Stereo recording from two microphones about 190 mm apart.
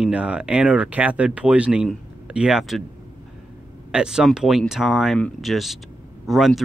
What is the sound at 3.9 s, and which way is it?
Speech, 5° right (ahead or behind).